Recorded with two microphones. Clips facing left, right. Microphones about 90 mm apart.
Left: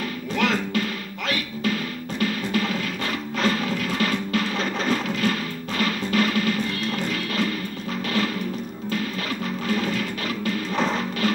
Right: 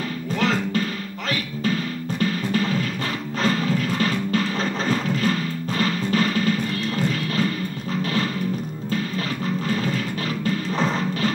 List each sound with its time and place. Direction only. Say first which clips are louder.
0.4 s music: right 1 dB; 35° right (ahead or behind)
2.1 s music: right 1 dB; 35° right (ahead or behind)
10.4 s music: right 1 dB; 35° right (ahead or behind)